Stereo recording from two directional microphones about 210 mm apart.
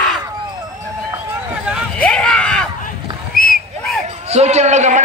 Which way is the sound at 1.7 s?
Centre (ahead or behind).